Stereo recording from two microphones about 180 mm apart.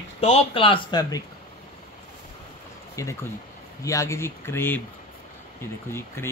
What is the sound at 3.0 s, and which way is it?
Speech, 15° left (ahead or behind).